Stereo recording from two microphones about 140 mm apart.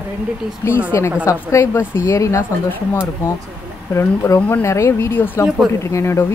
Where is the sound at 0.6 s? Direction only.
20° left (ahead or behind).